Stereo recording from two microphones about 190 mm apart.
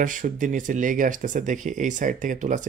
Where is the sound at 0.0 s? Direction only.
45° right (ahead or behind).